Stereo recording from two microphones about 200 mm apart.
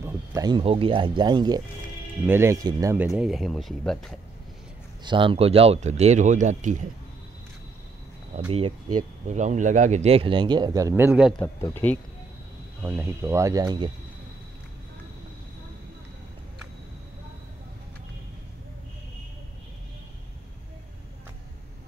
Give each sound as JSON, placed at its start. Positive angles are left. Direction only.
{"t": 0.0, "sound": "speech", "side_deg": -15}
{"t": 3.2, "sound": "speech", "side_deg": 0}
{"t": 5.0, "sound": "speech", "side_deg": -25}
{"t": 8.5, "sound": "speech", "side_deg": -25}
{"t": 11.3, "sound": "speech", "side_deg": 10}
{"t": 12.8, "sound": "speech", "side_deg": -10}